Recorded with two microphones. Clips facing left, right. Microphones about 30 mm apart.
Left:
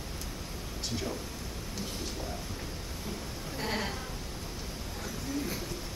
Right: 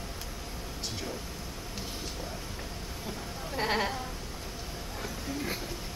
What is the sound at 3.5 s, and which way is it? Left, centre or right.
Speech, right.